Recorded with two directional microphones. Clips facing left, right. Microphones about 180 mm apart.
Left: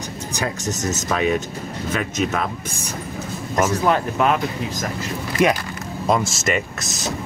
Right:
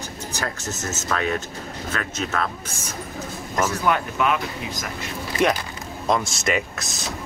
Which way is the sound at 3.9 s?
35° left (ahead or behind).